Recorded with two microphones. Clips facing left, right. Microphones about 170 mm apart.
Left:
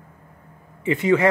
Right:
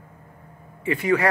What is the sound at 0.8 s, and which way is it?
Speech, 20° left (ahead or behind).